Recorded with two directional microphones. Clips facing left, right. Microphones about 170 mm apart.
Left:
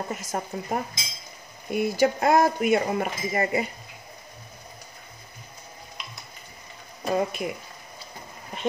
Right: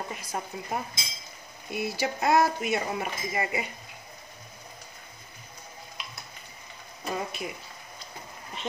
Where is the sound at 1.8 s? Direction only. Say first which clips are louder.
Left 7 dB; 50° left (ahead or behind).